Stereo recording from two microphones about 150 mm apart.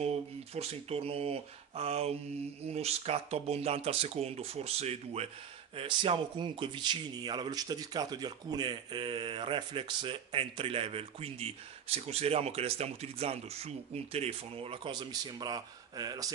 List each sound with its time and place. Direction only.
0.6 s speech: 40° right (ahead or behind); by 16.3 s 25° right (ahead or behind)